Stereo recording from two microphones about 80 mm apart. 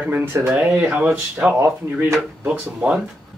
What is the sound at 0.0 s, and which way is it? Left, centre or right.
Speech, right.